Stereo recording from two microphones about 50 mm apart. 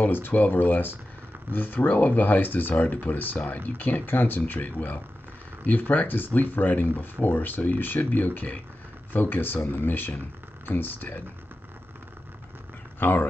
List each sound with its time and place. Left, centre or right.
0.0 s speech: left
13.0 s speech: left